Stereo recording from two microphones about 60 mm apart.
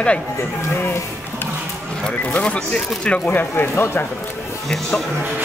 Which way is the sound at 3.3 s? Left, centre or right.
Left.